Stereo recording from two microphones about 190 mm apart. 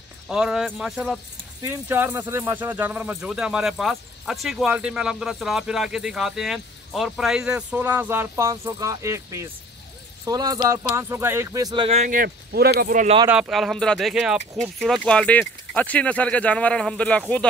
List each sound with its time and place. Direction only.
0.3 s speech: 5° right (ahead or behind); by 12.1 s 30° right (ahead or behind)
12.1 s speech: 50° right (ahead or behind)
13.3 s speech: centre (ahead or behind)